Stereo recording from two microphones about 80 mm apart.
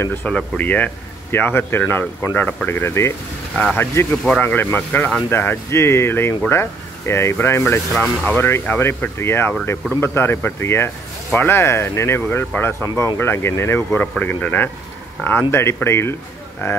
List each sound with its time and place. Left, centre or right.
0.2 s speech: centre
7.9 s speech: centre
8.4 s speech: left